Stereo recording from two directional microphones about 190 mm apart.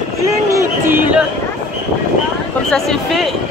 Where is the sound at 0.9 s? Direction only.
10° right (ahead or behind).